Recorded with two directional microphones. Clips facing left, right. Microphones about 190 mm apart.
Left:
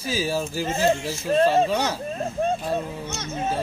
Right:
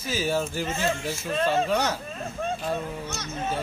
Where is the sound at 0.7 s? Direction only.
35° left (ahead or behind).